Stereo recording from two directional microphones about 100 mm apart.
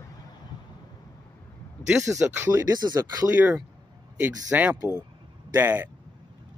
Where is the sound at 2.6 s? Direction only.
40° right (ahead or behind).